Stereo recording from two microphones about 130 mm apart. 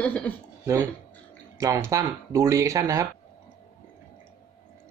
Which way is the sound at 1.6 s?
25° right (ahead or behind).